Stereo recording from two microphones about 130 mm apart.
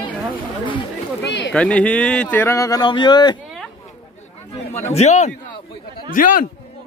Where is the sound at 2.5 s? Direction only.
25° left (ahead or behind).